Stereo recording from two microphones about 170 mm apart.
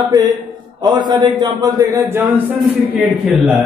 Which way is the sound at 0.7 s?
25° right (ahead or behind).